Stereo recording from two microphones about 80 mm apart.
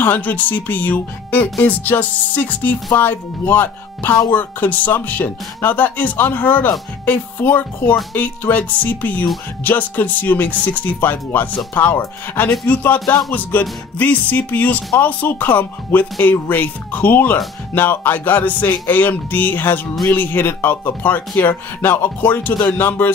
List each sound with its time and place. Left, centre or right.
0.0 s speech: left